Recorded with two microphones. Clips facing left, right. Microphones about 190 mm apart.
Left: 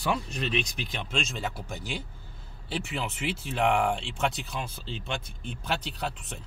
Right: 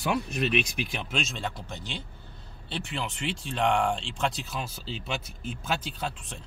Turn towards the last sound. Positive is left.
turn(degrees=0)  # may be behind; listen again after turning